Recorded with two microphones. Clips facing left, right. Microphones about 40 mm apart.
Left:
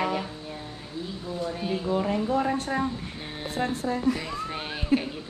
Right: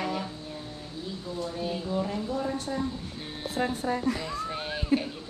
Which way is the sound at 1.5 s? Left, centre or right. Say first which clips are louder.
Left 3 dB; left.